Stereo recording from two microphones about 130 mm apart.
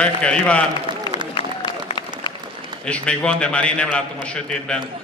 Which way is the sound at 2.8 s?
10° left (ahead or behind).